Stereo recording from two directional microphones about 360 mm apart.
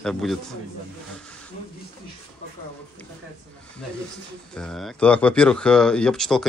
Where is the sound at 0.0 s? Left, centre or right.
Centre.